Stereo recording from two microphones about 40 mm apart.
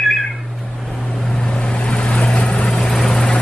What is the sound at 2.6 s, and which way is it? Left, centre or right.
Vehicle, centre.